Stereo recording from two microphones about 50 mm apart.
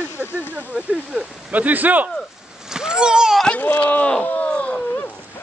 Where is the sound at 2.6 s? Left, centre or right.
Centre.